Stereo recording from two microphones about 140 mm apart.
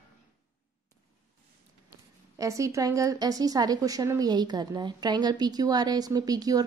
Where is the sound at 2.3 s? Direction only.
20° right (ahead or behind).